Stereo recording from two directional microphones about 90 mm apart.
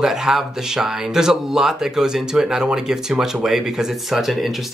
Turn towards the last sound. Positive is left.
turn(degrees=0)  # may be behind; listen again after turning